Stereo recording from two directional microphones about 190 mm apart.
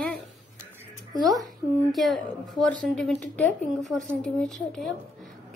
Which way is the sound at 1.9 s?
Centre (ahead or behind).